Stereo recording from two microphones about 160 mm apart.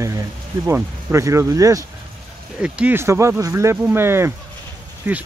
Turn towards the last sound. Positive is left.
turn(degrees=-10)  # may be behind; listen again after turning